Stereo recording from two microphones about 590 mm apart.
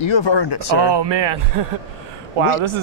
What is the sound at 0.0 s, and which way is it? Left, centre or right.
Speech, left.